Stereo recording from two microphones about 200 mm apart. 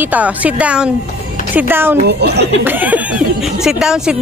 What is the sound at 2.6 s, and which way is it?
Speech, 10° right (ahead or behind).